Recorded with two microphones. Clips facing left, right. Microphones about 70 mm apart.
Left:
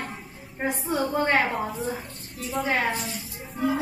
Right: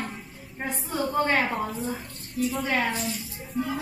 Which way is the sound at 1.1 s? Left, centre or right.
Left.